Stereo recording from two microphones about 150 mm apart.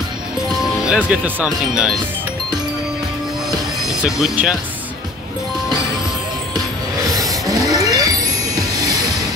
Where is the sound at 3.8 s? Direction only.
5° right (ahead or behind).